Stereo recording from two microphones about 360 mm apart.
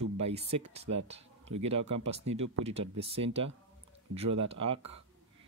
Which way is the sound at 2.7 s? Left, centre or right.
Centre.